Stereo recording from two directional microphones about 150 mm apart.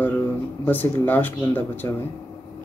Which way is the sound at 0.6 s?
10° left (ahead or behind).